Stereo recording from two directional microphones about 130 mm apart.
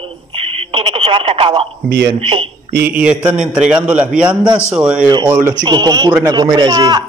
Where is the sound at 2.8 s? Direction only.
10° right (ahead or behind).